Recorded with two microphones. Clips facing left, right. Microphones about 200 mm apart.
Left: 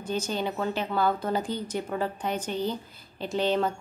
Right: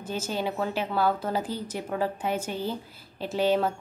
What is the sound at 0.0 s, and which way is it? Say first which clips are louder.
Speech: left 1 dB; 5° right (ahead or behind).